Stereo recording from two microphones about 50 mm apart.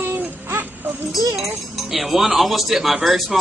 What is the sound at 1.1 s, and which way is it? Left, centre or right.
Speech, centre.